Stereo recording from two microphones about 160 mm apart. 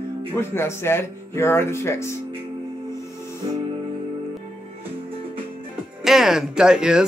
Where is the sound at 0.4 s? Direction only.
15° left (ahead or behind).